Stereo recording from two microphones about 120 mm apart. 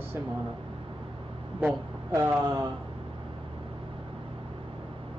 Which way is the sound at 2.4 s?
35° right (ahead or behind).